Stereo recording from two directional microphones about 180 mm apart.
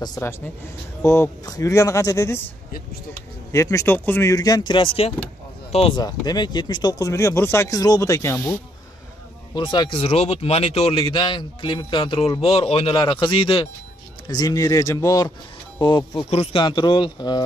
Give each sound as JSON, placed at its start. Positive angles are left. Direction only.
{"t": 0.0, "sound": "speech", "side_deg": 15}
{"t": 3.5, "sound": "speech", "side_deg": 15}